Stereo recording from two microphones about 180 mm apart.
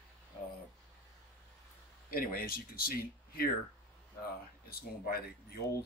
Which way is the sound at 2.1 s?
55° left (ahead or behind).